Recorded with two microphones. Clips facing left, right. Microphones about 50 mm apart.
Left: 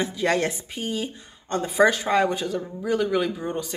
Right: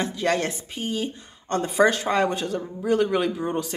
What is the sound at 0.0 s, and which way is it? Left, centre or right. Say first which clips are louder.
A woman's voice: left 1 dB; centre.